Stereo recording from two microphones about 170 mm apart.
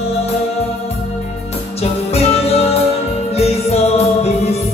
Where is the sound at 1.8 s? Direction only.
35° left (ahead or behind).